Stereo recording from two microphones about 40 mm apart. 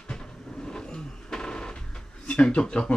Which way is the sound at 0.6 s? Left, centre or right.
Centre.